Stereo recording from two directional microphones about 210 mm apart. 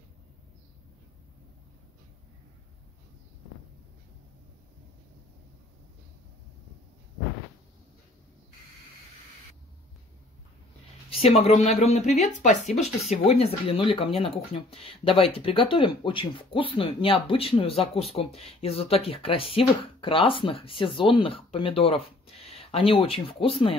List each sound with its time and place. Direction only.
11.1 s speech: 30° left (ahead or behind)